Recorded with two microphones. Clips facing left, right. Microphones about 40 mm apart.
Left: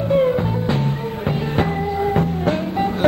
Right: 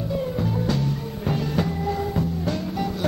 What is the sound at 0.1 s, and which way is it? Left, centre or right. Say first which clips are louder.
Music: left 10 dB; left.